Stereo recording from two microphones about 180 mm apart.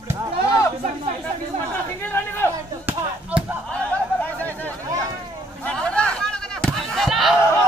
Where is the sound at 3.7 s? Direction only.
10° left (ahead or behind).